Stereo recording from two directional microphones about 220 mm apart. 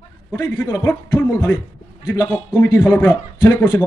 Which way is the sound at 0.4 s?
15° left (ahead or behind).